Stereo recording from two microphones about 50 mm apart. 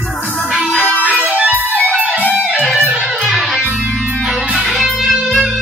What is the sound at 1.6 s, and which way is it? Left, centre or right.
Music, left.